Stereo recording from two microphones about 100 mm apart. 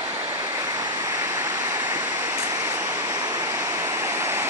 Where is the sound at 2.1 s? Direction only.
25° right (ahead or behind).